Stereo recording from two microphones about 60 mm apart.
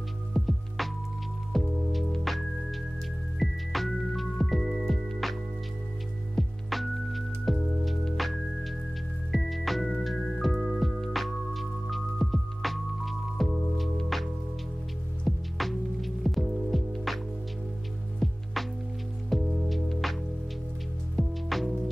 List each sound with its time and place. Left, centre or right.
0.3 s music: centre
6.3 s music: centre
18.2 s music: centre
21.2 s music: centre